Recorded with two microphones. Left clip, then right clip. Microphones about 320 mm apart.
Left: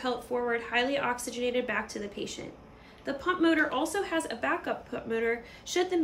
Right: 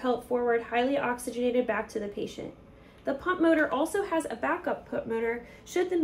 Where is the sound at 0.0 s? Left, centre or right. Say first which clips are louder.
Right 3 dB; centre.